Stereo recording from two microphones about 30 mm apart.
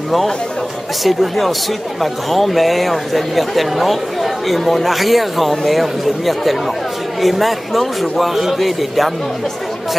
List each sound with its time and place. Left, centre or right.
1.0 s speech: centre